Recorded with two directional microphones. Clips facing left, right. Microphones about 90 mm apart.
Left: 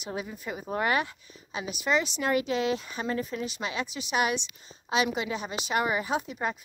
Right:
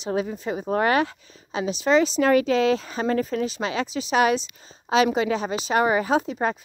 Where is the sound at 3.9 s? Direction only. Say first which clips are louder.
Right 9 dB; 90° right.